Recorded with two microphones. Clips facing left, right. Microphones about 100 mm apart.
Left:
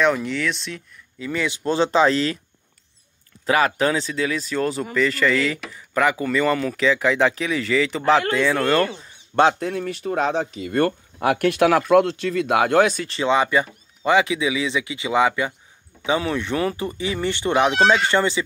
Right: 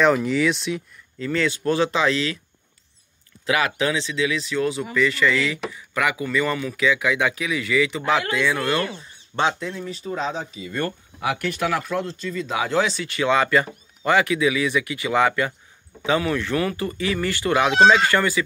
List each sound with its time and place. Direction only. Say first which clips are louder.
0.0 s speech: right 2 dB; 5° right (ahead or behind)
1.2 s speech: right 2 dB; 15° left (ahead or behind); by 2.3 s 40° left (ahead or behind)
3.4 s speech: left 3 dB; 40° left (ahead or behind)
9.3 s speech: left 6 dB; 50° left (ahead or behind)
13.2 s speech: even; 20° left (ahead or behind)